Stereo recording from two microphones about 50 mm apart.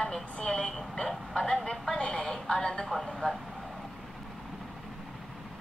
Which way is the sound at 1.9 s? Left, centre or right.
Centre.